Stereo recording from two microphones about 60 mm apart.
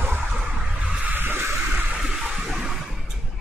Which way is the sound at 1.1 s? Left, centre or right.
Right.